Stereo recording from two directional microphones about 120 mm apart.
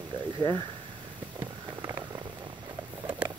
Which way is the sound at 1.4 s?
35° right (ahead or behind).